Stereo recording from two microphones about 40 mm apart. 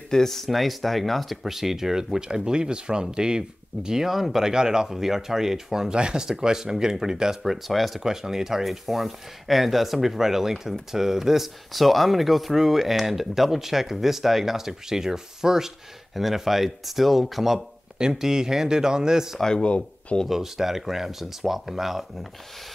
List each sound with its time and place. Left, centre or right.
0.1 s speech: centre
8.0 s speech: centre
17.9 s speech: centre
19.6 s speech: left
20.2 s speech: centre